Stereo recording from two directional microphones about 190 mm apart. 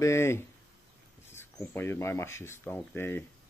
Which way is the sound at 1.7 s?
10° left (ahead or behind).